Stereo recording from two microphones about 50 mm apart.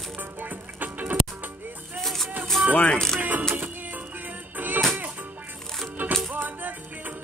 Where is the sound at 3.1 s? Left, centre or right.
Right.